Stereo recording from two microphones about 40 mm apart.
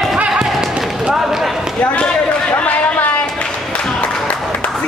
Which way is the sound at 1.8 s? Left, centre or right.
Left.